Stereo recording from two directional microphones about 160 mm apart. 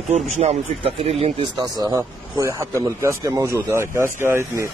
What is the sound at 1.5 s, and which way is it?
Speech, 25° right (ahead or behind).